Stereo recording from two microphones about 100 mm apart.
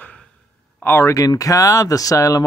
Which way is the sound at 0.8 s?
25° left (ahead or behind).